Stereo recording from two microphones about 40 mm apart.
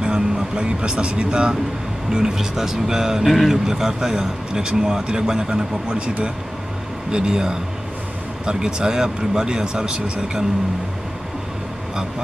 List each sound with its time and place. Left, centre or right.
0.0 s a man's voice: right
3.3 s speech: centre
3.6 s a man's voice: centre